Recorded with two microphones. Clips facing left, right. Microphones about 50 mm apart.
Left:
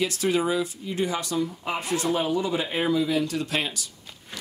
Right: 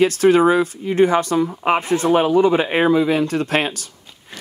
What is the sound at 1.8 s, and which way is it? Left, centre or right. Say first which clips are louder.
Speech: right 7 dB; right.